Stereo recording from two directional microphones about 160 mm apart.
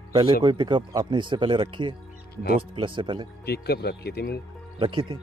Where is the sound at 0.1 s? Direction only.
30° right (ahead or behind).